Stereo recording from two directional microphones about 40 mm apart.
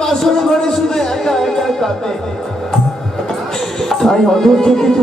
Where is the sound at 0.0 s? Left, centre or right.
Centre.